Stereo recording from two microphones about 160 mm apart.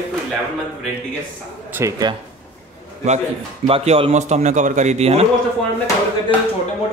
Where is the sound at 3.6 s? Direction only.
40° right (ahead or behind).